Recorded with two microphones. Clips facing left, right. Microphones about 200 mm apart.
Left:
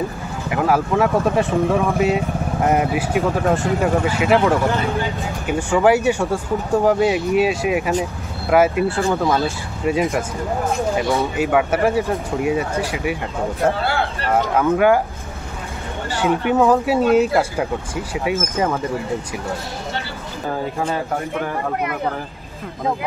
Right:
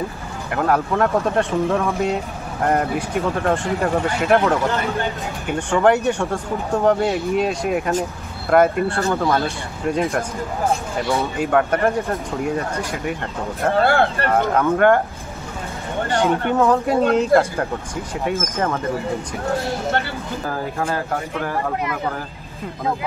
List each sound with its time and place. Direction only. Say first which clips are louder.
0.5 s speech: left 1 dB; 5° left (ahead or behind)
2.6 s speech: left 1 dB; 5° left (ahead or behind)
13.7 s speech: right 5 dB; 50° right (ahead or behind)
14.3 s speech: left 4 dB; 5° left (ahead or behind)
16.2 s speech: left 2 dB; 10° left (ahead or behind)
20.8 s speech: right 1 dB; centre (ahead or behind)